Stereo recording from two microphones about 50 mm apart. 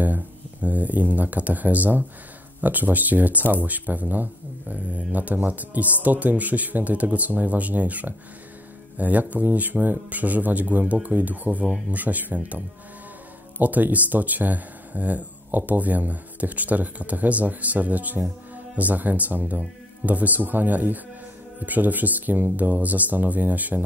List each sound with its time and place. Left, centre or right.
0.0 s speech: right
13.6 s speech: right